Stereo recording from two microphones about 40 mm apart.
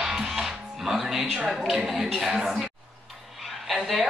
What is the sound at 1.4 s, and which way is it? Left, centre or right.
Speech, centre.